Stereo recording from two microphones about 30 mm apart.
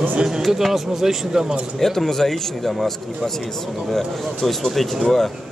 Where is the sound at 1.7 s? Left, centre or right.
Centre.